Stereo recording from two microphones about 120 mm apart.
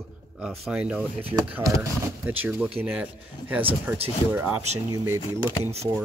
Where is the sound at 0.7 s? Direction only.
10° right (ahead or behind).